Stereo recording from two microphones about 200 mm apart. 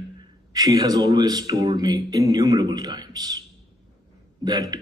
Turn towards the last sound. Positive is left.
turn(degrees=-20)  # may be behind; listen again after turning